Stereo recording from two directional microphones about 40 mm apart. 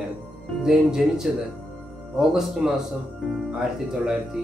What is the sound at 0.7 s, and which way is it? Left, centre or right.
Speech, centre.